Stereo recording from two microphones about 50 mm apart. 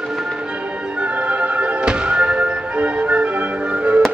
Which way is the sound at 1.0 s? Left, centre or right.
Right.